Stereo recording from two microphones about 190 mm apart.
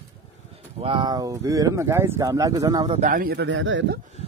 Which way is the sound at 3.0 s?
45° right (ahead or behind).